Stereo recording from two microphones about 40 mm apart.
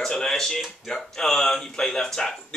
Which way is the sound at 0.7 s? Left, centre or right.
Centre.